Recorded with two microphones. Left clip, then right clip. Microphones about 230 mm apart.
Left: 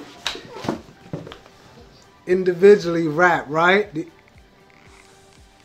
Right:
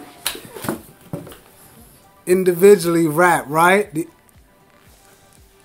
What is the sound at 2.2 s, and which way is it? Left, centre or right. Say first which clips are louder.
Speech: right 2 dB; right.